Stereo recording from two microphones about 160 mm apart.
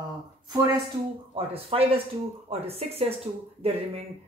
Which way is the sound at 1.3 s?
35° right (ahead or behind).